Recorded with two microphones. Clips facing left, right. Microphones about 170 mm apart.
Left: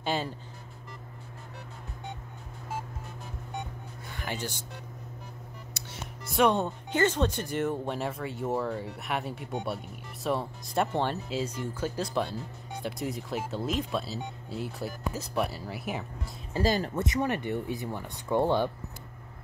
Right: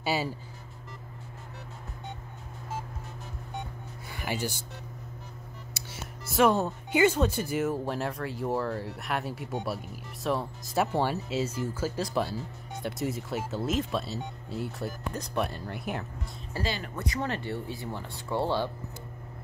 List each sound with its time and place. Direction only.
0.0 s speech: 5° right (ahead or behind)
4.1 s speech: 10° right (ahead or behind)
5.8 s speech: 5° right (ahead or behind)
16.6 s speech: 40° left (ahead or behind)
16.9 s speech: 20° left (ahead or behind)